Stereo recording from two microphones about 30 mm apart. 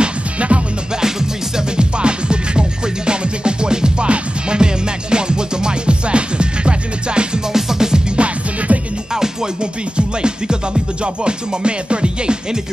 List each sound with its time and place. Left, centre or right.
0.0 s music: right
1.8 s music: right
7.5 s music: centre
8.2 s music: right
9.1 s music: right
9.9 s music: right